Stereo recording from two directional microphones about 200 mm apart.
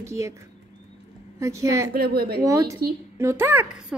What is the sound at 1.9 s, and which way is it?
Speech, 50° right (ahead or behind).